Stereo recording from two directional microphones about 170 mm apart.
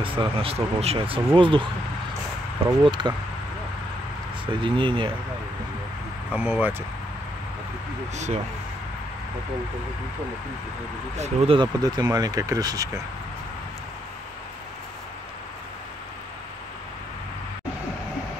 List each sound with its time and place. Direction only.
0.2 s speech: 35° right (ahead or behind)
2.8 s speech: 25° right (ahead or behind)
4.5 s speech: 30° right (ahead or behind)
6.3 s speech: 10° right (ahead or behind)
11.1 s speech: 40° right (ahead or behind); by 13.0 s 20° right (ahead or behind)